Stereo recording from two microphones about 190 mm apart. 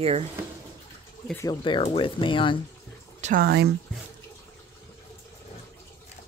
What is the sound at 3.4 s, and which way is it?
Speech, 60° right (ahead or behind).